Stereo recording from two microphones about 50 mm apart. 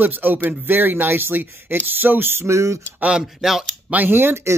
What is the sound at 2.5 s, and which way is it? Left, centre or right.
Speech, right.